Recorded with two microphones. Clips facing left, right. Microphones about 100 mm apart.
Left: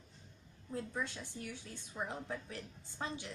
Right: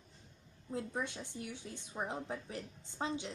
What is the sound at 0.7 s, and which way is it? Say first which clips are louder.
A woman's voice: right 1 dB; 20° right (ahead or behind).